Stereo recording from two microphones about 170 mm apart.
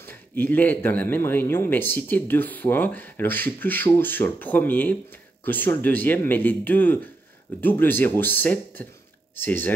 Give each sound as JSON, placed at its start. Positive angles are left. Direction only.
{"t": 0.3, "sound": "speech", "side_deg": 10}